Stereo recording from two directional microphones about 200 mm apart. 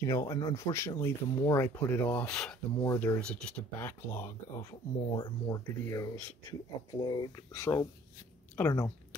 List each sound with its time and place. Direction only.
0.0 s speech: 15° left (ahead or behind)
4.6 s speech: 25° left (ahead or behind)